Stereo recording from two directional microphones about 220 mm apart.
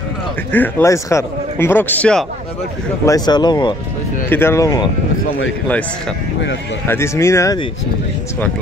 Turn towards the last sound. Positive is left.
turn(degrees=20)  # may be behind; listen again after turning